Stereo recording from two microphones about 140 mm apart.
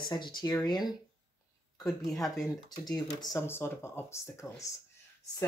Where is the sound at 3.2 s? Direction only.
20° left (ahead or behind).